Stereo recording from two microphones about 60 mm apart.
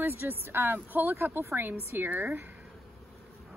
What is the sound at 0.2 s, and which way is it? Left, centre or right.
A woman's voice, right.